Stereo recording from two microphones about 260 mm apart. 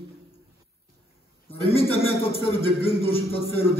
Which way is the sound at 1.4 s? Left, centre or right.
Left.